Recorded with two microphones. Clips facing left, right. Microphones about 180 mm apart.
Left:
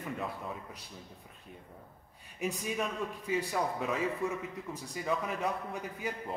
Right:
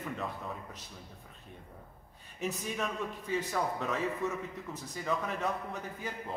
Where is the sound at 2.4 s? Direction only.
10° left (ahead or behind).